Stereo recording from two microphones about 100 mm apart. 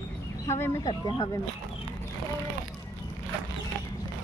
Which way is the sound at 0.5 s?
30° left (ahead or behind).